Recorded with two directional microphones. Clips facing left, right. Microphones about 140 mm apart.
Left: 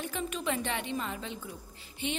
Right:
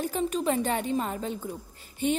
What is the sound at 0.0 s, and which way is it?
A woman's voice, 40° right (ahead or behind).